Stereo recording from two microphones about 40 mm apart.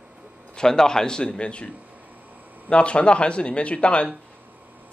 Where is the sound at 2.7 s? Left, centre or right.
Left.